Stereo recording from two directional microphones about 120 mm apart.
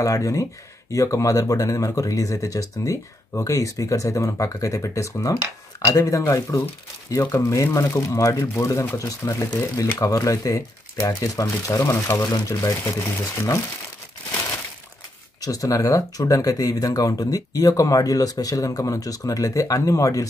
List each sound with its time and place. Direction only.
0.0 s speech: 30° left (ahead or behind)
15.4 s speech: 30° left (ahead or behind)